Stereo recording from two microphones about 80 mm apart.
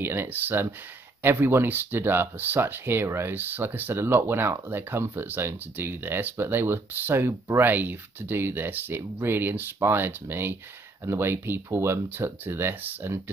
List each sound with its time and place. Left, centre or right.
0.0 s speech: right